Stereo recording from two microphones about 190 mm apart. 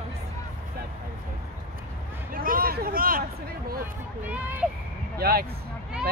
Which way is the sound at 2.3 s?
50° right (ahead or behind).